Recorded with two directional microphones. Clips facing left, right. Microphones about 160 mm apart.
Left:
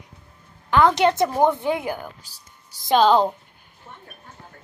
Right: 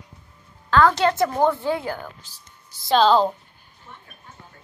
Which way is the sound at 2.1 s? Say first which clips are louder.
Right 1 dB; 40° left (ahead or behind).